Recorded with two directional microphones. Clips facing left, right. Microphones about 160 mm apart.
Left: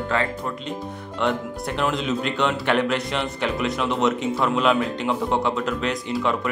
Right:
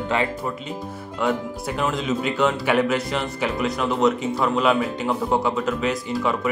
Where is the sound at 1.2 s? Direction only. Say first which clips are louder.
Right 1 dB; 5° right (ahead or behind).